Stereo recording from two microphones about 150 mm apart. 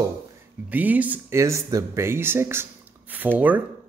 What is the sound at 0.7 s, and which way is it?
Speech, 10° right (ahead or behind).